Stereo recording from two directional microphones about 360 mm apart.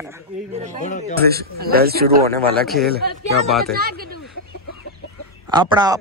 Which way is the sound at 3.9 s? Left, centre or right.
Right.